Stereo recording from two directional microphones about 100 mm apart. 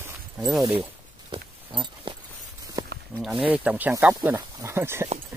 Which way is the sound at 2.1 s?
60° right (ahead or behind).